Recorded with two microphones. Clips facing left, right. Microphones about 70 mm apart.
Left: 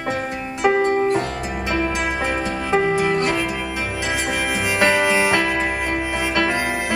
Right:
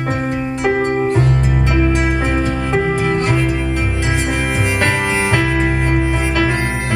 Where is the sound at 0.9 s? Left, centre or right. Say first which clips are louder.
Right 1 dB; right.